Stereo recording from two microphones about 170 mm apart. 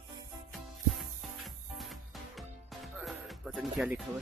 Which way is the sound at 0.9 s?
Centre (ahead or behind).